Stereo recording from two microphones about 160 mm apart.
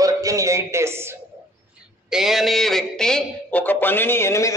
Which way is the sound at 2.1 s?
5° right (ahead or behind).